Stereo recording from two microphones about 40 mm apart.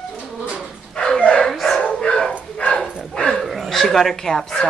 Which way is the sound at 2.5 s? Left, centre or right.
Left.